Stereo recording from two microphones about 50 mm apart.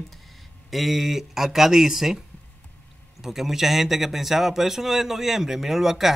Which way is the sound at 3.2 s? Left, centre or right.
Centre.